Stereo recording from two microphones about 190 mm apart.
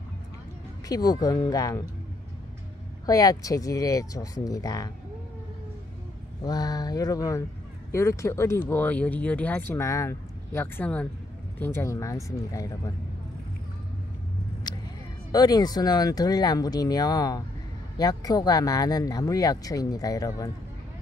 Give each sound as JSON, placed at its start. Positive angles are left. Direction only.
{"t": 0.8, "sound": "speech", "side_deg": 20}
{"t": 3.1, "sound": "speech", "side_deg": 20}
{"t": 6.4, "sound": "speech", "side_deg": 20}
{"t": 15.3, "sound": "speech", "side_deg": 20}